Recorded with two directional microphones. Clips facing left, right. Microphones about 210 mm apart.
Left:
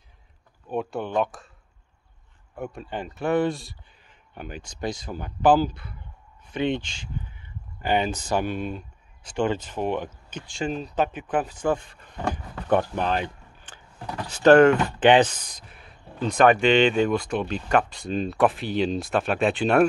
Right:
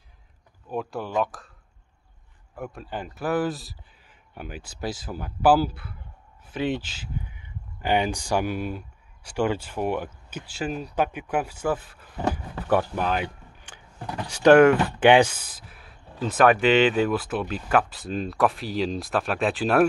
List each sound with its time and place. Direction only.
0.7 s speech: centre (ahead or behind)
2.5 s speech: centre (ahead or behind)